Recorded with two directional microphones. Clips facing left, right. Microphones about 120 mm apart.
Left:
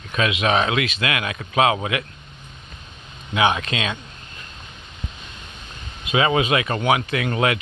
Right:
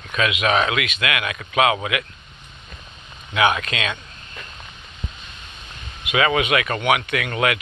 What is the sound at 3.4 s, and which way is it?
Speech, 30° left (ahead or behind).